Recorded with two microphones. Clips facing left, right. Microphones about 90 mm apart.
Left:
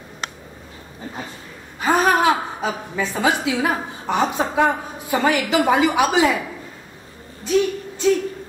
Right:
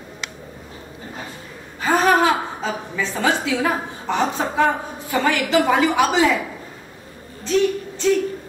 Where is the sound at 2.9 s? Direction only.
20° left (ahead or behind).